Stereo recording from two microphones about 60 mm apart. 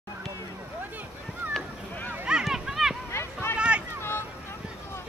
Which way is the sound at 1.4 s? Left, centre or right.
Right.